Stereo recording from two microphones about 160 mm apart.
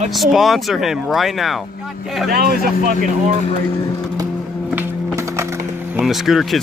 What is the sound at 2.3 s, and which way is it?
Speech, 70° right (ahead or behind).